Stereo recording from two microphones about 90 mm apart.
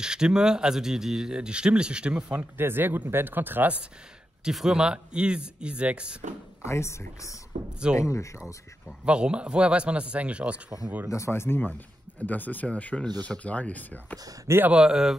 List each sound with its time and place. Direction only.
0.0 s speech: 10° right (ahead or behind)
2.5 s speech: 25° right (ahead or behind)
4.5 s speech: 5° right (ahead or behind)
6.6 s speech: 30° left (ahead or behind)
8.8 s speech: 10° right (ahead or behind)
11.1 s speech: 30° left (ahead or behind)
14.1 s speech: 40° right (ahead or behind)
14.7 s speech: 10° right (ahead or behind)